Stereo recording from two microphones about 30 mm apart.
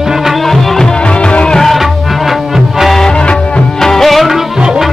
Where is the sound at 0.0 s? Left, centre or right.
Centre.